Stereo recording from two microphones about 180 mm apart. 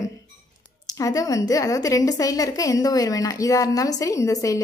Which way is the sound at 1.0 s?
20° left (ahead or behind).